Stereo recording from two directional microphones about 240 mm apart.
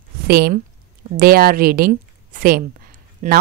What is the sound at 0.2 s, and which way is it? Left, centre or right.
A woman's voice, right.